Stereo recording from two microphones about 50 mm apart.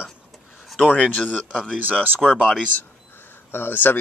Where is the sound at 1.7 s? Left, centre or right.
Right.